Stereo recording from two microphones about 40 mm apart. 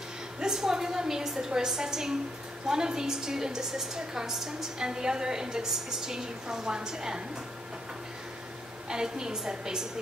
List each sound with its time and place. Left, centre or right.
0.4 s a woman's voice: centre
8.8 s a woman's voice: centre